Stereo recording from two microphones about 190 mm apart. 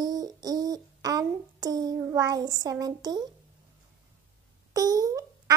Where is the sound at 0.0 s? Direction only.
20° right (ahead or behind).